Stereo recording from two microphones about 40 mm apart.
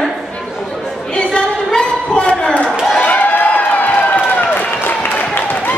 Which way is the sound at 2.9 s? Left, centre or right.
Left.